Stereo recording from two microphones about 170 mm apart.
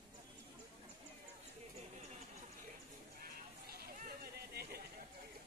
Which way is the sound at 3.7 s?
65° right (ahead or behind).